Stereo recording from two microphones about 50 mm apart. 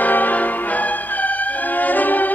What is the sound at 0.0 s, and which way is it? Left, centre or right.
Music, left.